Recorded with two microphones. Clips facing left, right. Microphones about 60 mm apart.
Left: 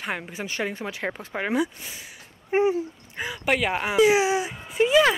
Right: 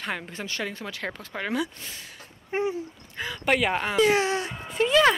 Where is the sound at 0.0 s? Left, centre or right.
Centre.